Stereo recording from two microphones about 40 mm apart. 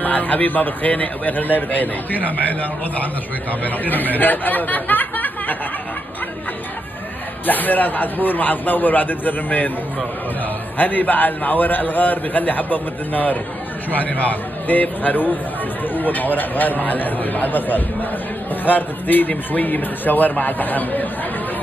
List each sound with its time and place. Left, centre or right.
0.0 s a man's voice: left
3.6 s speech: left
7.4 s a man's voice: left
10.8 s a man's voice: left